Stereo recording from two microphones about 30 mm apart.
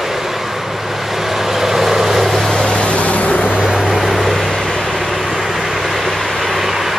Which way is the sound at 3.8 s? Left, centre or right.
Centre.